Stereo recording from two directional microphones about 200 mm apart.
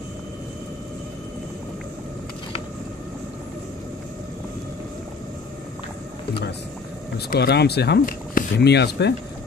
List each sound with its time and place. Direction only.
7.2 s speech: 55° left (ahead or behind)